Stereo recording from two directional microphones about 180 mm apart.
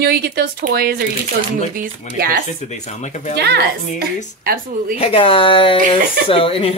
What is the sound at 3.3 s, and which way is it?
Speech, 65° right (ahead or behind).